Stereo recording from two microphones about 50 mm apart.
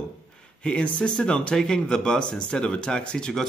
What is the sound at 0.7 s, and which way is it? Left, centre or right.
Speech, left.